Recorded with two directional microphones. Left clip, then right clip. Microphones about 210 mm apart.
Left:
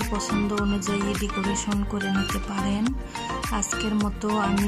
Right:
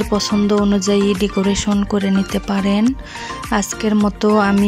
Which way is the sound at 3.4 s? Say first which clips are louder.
Right 12 dB; 20° right (ahead or behind).